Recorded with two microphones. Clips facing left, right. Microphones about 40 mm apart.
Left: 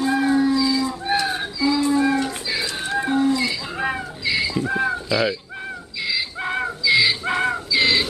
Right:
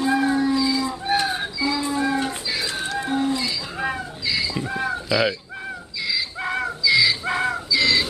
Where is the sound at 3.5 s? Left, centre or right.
Centre.